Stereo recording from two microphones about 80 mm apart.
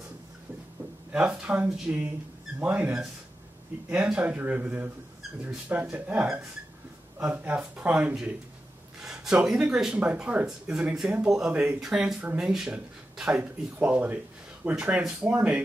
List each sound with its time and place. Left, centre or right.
1.1 s speech: centre
3.9 s speech: centre
7.2 s speech: centre